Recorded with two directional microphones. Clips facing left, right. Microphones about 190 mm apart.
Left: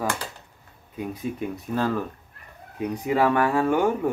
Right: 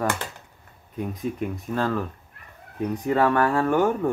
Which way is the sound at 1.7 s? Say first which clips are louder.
Left 1 dB; 15° left (ahead or behind).